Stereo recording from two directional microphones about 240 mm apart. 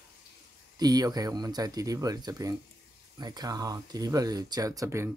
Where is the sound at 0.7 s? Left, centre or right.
Centre.